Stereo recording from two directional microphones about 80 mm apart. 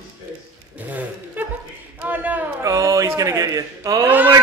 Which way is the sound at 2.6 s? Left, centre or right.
Right.